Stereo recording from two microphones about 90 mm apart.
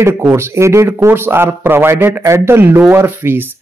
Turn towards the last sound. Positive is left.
turn(degrees=-25)  # may be behind; listen again after turning